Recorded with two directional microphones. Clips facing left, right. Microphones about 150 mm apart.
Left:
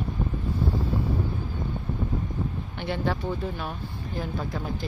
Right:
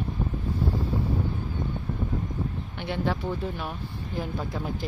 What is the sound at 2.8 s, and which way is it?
Speech, 5° right (ahead or behind).